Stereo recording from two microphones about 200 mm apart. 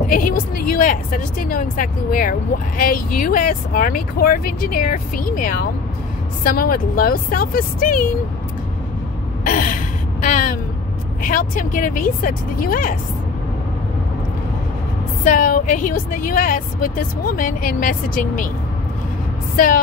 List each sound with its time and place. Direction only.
0.1 s speech: 45° left (ahead or behind)
9.4 s gasp: 45° left (ahead or behind)
11.2 s speech: 40° left (ahead or behind)
15.2 s speech: 45° left (ahead or behind)
19.5 s speech: 45° left (ahead or behind)